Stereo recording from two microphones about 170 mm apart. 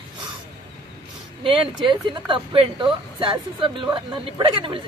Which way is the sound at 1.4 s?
30° right (ahead or behind).